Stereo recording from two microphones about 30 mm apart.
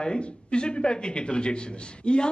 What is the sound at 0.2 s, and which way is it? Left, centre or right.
A woman's voice, left.